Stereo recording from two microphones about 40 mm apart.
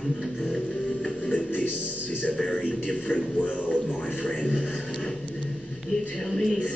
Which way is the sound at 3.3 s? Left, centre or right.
Left.